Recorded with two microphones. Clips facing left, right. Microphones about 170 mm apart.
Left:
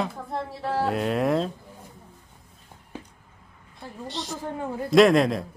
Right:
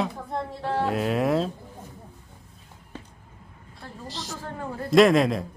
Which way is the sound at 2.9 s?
10° left (ahead or behind).